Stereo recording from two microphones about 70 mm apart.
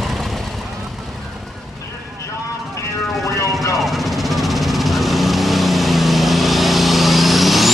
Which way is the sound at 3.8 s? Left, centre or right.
Centre.